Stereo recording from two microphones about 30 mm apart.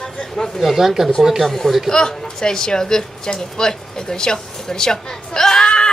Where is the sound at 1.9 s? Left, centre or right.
Left.